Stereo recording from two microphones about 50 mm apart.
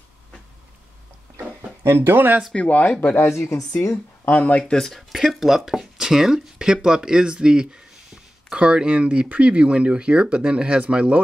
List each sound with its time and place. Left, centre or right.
1.8 s speech: right
2.5 s speech: left
3.3 s a woman's voice: left
3.8 s speech: left
4.3 s speech: left
4.7 s speech: centre
5.3 s speech: centre
8.5 s speech: right